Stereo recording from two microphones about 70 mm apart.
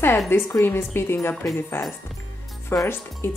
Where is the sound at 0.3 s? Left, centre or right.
Left.